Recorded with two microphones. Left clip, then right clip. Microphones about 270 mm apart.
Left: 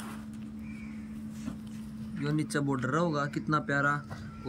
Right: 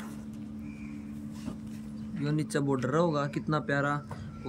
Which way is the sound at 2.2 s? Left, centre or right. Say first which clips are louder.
Even; centre.